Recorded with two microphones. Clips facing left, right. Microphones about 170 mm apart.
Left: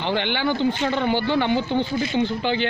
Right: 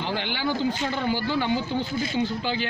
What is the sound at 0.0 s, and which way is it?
Speech, 65° left (ahead or behind).